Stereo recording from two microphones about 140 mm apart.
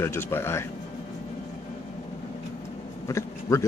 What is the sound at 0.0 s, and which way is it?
Speech, 20° left (ahead or behind).